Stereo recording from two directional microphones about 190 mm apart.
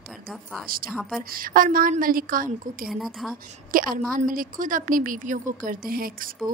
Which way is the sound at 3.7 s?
45° right (ahead or behind).